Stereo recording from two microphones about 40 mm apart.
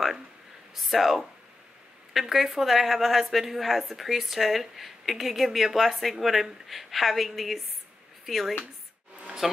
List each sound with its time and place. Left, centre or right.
0.7 s a woman's voice: centre